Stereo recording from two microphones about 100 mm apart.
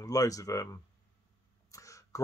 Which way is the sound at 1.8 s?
35° left (ahead or behind).